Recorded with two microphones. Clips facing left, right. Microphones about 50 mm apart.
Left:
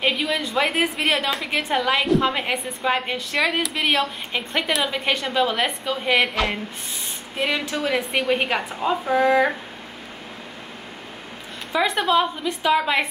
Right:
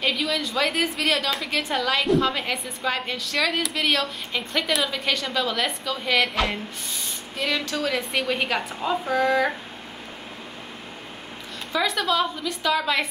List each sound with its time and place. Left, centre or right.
0.0 s a woman's voice: left
7.3 s a woman's voice: left
11.7 s a woman's voice: left